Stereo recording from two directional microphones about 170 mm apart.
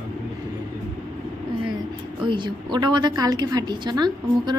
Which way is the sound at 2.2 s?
25° right (ahead or behind).